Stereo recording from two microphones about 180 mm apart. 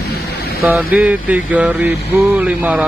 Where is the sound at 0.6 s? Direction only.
10° right (ahead or behind).